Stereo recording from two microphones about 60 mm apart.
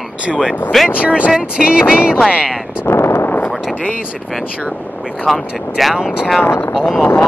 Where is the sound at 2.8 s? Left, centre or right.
Left.